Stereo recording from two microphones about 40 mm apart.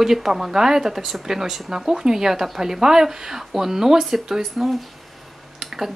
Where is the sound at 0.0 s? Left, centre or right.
Centre.